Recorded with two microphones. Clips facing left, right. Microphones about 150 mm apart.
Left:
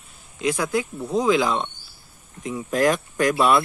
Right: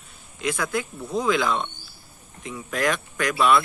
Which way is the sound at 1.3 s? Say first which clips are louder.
Left 2 dB; 30° left (ahead or behind).